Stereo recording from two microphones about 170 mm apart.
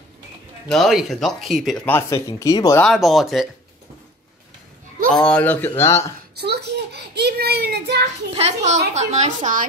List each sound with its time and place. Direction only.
0.7 s speech: centre (ahead or behind)
1.9 s speech: 15° left (ahead or behind)
2.8 s speech: centre (ahead or behind)
5.1 s speech: 5° left (ahead or behind)
6.4 s a child's voice: 75° right (ahead or behind)
8.4 s a woman's voice: 40° right (ahead or behind)